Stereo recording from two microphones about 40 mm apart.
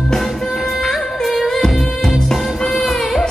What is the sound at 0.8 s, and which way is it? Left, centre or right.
Music, centre.